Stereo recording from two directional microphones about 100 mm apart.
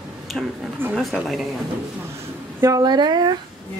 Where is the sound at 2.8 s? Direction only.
45° right (ahead or behind).